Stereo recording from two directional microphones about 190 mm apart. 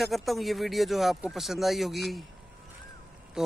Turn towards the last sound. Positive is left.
turn(degrees=-5)  # may be behind; listen again after turning